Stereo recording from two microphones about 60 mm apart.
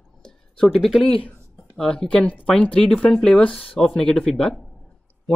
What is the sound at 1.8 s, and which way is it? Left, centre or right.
Speech, centre.